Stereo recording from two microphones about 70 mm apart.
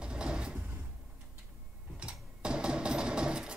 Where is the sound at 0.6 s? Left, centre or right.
Right.